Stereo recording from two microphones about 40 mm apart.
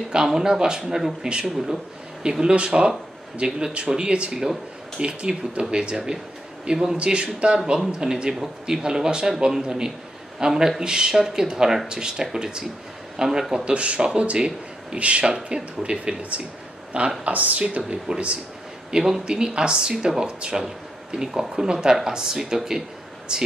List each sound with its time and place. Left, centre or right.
0.1 s speech: centre
0.9 s speech: centre
2.5 s speech: right
4.4 s speech: centre
13.7 s speech: right
16.2 s speech: right
17.8 s speech: right
18.9 s speech: centre
20.6 s speech: centre